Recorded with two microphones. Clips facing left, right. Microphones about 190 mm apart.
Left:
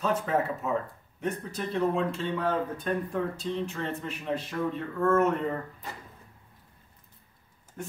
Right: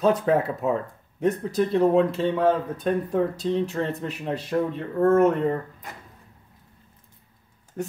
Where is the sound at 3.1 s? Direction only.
40° right (ahead or behind).